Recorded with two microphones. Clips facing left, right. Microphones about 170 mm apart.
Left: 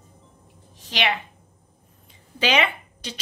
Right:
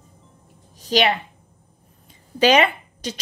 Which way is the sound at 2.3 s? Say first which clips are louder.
Right 6 dB; 40° right (ahead or behind).